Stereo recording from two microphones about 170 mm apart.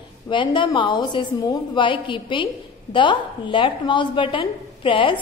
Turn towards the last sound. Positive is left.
turn(degrees=30)  # may be behind; listen again after turning